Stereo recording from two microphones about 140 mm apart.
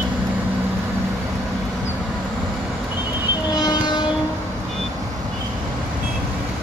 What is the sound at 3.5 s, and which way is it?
Train, 30° left (ahead or behind).